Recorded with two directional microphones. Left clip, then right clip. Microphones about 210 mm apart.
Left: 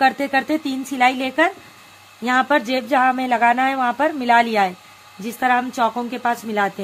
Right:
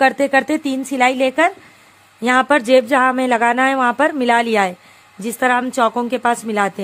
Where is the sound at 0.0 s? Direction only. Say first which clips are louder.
Right 3 dB; 45° right (ahead or behind).